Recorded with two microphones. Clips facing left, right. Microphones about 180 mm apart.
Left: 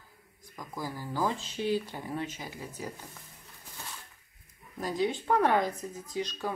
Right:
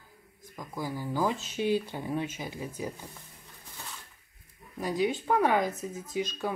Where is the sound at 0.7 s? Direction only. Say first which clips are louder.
Right 2 dB; 20° right (ahead or behind).